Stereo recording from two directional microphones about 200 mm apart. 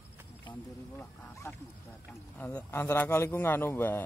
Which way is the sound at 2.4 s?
10° left (ahead or behind).